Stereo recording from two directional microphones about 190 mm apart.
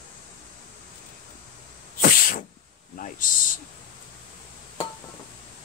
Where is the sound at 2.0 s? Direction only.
45° left (ahead or behind).